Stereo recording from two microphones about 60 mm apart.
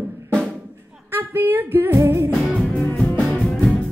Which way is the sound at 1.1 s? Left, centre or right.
Right.